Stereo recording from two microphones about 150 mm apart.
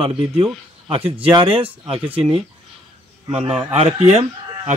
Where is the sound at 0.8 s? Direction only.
40° right (ahead or behind).